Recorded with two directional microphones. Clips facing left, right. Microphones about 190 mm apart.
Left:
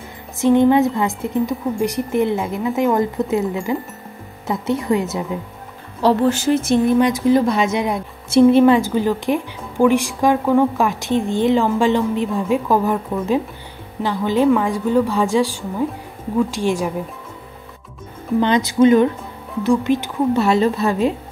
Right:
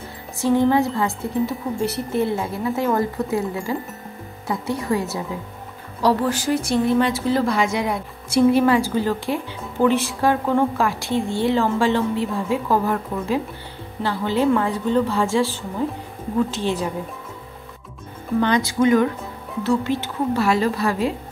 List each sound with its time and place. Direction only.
0.4 s speech: 20° left (ahead or behind)
18.4 s speech: 20° left (ahead or behind)